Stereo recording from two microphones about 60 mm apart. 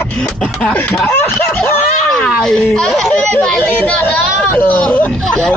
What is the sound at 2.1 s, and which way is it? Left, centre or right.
Speech, centre.